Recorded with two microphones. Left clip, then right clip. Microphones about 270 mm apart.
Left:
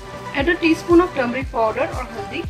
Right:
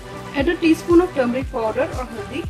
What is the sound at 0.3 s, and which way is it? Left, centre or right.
Speech, right.